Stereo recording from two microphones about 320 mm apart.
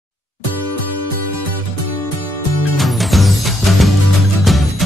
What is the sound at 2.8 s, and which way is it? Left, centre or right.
Music, centre.